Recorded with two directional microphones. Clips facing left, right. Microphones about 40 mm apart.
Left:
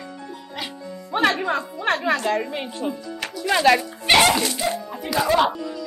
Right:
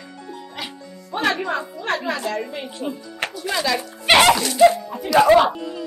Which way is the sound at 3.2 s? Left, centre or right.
Right.